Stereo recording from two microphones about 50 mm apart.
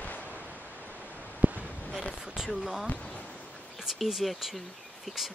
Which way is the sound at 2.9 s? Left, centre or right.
Left.